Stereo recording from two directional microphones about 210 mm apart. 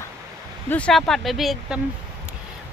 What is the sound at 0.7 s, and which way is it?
Speech, 5° left (ahead or behind).